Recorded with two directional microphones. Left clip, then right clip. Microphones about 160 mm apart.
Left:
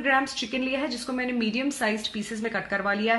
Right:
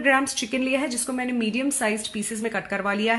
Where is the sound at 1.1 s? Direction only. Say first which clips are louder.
Even; 20° right (ahead or behind).